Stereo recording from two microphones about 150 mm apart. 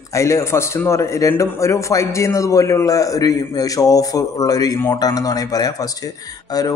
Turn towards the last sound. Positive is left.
turn(degrees=25)  # may be behind; listen again after turning